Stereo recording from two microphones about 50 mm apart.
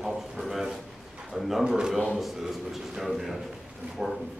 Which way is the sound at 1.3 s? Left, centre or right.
Centre.